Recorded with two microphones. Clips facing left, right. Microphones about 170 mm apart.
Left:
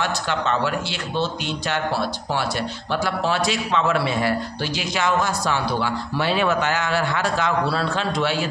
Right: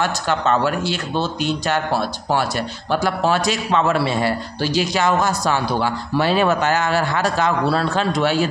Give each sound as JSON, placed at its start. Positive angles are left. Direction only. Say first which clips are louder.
{"t": 0.0, "sound": "a man's voice", "louder": "right 4 dB", "side_deg": -45}